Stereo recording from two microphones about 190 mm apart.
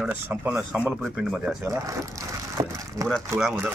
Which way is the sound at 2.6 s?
15° right (ahead or behind).